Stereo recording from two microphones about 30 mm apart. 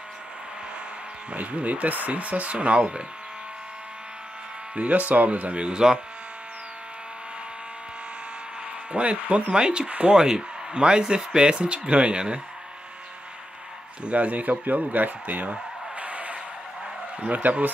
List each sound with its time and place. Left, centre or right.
1.3 s speech: right
4.7 s speech: right
5.5 s speech: right
8.9 s speech: right
9.8 s speech: right
10.1 s speech: right
11.5 s speech: right
14.0 s speech: right
16.0 s vehicle: right
17.4 s speech: right